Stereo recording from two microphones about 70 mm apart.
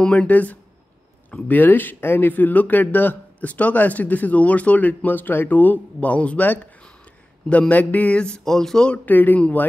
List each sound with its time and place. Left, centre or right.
0.0 s speech: centre
0.3 s speech: left
9.0 s speech: left